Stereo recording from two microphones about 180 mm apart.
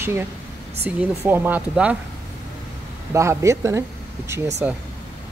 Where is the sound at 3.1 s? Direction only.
15° right (ahead or behind).